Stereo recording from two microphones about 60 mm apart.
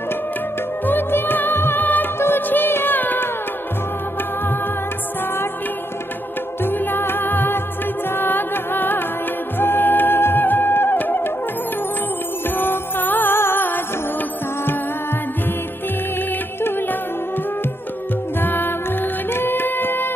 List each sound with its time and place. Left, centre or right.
0.8 s music: left
6.6 s music: left
12.4 s music: left
18.4 s music: left